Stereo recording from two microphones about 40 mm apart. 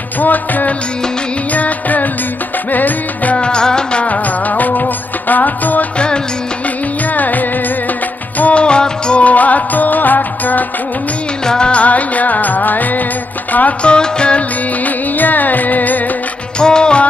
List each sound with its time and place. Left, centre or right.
0.2 s music: left
3.3 s music: left
4.0 s music: left
5.9 s music: left
7.2 s music: left
8.6 s music: left
9.2 s music: left
11.4 s music: centre
11.7 s music: left
13.8 s music: left
15.1 s carnatic music: left
16.5 s music: left